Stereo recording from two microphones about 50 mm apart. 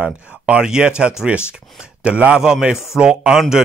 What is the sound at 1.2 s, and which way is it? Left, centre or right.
Speech, centre.